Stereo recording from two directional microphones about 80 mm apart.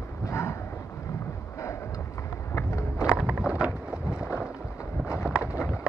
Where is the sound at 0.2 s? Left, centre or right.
Left.